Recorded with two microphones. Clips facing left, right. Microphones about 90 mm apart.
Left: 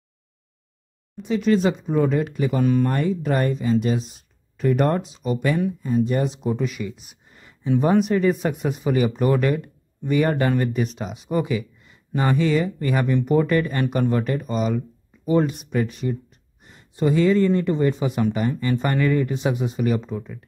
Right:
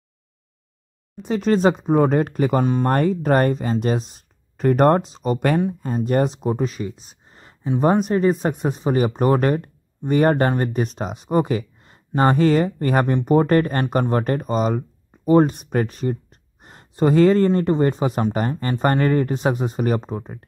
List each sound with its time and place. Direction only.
1.2 s speech: 40° right (ahead or behind)
16.6 s a sound: 45° right (ahead or behind)
17.6 s speech: 45° right (ahead or behind)